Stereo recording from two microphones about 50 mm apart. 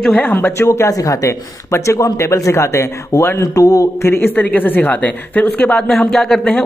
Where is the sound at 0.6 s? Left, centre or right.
Left.